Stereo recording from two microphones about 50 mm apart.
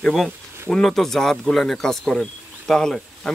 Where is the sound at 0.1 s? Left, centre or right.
Centre.